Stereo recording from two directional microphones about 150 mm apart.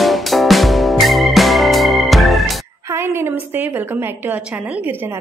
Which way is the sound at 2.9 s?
15° right (ahead or behind).